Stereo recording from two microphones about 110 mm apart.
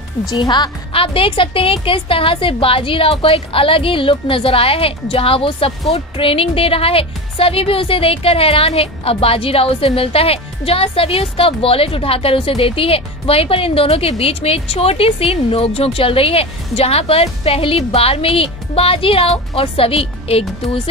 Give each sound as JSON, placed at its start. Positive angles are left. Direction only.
{"t": 0.3, "sound": "a woman's voice", "side_deg": 40}
{"t": 0.9, "sound": "a woman's voice", "side_deg": 55}